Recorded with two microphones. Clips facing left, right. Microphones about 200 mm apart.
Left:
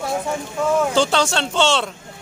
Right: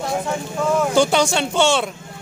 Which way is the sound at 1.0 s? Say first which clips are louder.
Right 2 dB; 15° right (ahead or behind).